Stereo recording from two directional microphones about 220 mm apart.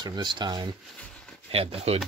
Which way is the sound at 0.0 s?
20° right (ahead or behind).